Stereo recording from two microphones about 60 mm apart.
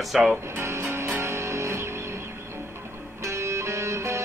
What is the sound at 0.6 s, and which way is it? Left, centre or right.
Music, right.